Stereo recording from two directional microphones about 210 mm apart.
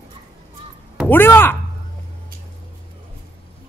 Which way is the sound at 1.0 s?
10° left (ahead or behind).